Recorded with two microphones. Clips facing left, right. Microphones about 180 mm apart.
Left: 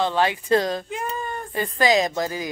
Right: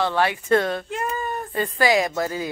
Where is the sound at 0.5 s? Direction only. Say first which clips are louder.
Right 2 dB; 35° left (ahead or behind).